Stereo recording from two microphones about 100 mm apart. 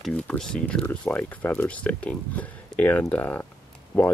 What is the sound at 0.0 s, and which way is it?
Speech, 10° left (ahead or behind).